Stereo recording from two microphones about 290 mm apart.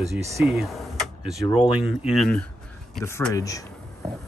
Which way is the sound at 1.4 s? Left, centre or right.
Centre.